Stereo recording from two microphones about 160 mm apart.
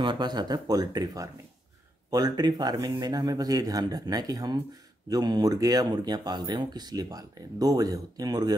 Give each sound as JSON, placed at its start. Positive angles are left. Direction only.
{"t": 0.0, "sound": "speech", "side_deg": -30}